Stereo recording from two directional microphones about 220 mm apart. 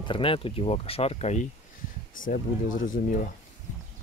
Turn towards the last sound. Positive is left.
turn(degrees=35)  # may be behind; listen again after turning